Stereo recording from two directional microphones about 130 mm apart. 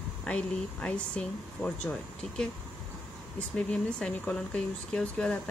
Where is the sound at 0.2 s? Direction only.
10° left (ahead or behind).